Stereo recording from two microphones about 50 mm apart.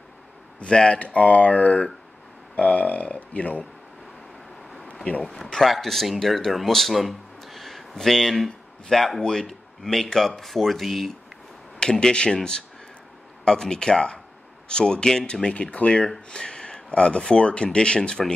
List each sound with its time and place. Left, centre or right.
0.7 s speech: left
5.2 s speech: centre
11.8 s speech: centre